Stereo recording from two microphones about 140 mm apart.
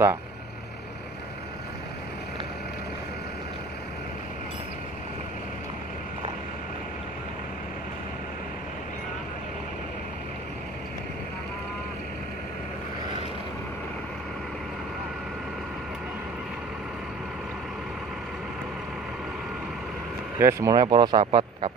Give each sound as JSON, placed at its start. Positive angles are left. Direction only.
{"t": 20.3, "sound": "speech", "side_deg": -20}